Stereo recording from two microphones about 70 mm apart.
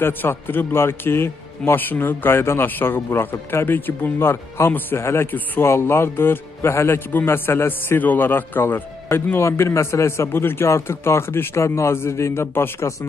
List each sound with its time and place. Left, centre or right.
0.0 s a man's voice: left
5.3 s a man's voice: left
5.7 s a man's voice: left